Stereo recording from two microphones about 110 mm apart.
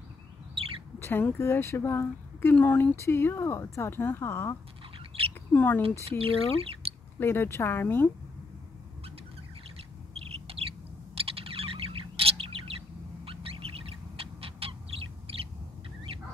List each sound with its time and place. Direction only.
0.6 s chirp: 55° right (ahead or behind)
0.9 s speech: 20° left (ahead or behind)
4.9 s bird: 60° right (ahead or behind)
5.5 s speech: 20° left (ahead or behind)
6.0 s speech: 60° right (ahead or behind)
7.2 s speech: 20° left (ahead or behind)
10.1 s bird: 60° right (ahead or behind)
11.1 s chirp: 60° right (ahead or behind)
16.1 s goose: 65° right (ahead or behind)